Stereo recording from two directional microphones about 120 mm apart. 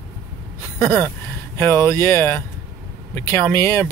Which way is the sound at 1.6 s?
20° left (ahead or behind).